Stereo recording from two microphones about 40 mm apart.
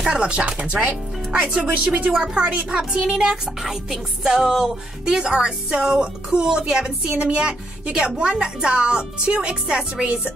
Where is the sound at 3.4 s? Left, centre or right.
Centre.